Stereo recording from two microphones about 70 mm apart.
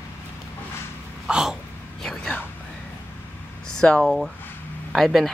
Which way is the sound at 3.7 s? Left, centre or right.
Centre.